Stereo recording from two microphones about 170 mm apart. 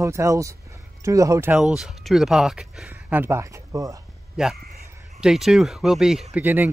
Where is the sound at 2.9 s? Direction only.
15° right (ahead or behind).